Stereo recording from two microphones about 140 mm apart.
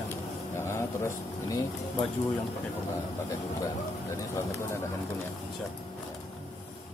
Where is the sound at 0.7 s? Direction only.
20° left (ahead or behind).